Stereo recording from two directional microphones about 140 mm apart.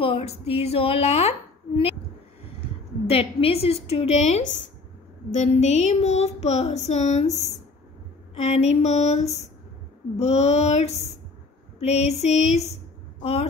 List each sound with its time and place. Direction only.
0.0 s child singing: 45° left (ahead or behind)
3.1 s child singing: 45° left (ahead or behind)